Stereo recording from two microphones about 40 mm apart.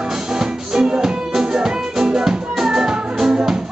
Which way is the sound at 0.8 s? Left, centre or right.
Centre.